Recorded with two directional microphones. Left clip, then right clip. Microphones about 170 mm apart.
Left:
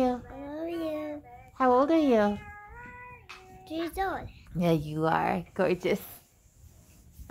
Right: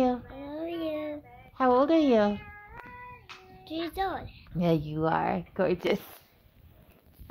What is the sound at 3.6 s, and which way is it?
Speech, 15° left (ahead or behind).